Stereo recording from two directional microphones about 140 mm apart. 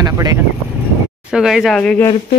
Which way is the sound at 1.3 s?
Centre (ahead or behind).